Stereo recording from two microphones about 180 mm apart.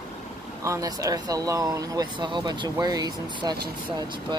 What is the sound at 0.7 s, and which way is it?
Speech, 20° right (ahead or behind).